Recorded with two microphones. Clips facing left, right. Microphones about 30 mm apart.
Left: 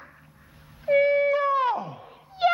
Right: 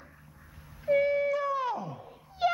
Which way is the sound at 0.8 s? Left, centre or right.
Left.